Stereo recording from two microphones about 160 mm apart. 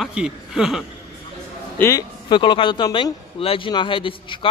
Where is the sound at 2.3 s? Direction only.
30° left (ahead or behind).